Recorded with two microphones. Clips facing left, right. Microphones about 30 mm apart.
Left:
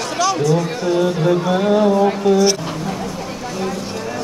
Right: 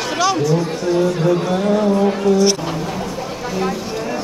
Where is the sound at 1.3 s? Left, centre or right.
Centre.